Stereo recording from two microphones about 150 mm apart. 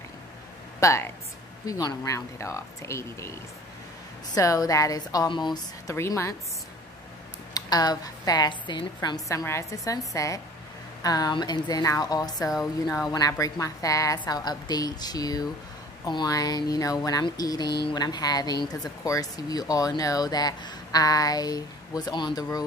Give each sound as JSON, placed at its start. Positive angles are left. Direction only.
{"t": 0.7, "sound": "a woman's voice", "side_deg": 20}
{"t": 5.9, "sound": "speech", "side_deg": 20}
{"t": 7.5, "sound": "speech", "side_deg": 25}